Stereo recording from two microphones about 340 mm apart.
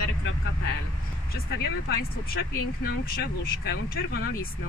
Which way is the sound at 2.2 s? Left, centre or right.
Left.